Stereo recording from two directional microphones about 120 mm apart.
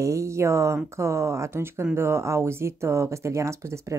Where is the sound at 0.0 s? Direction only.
25° right (ahead or behind).